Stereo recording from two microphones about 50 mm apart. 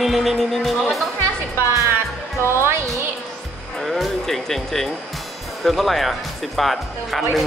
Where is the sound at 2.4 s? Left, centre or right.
Right.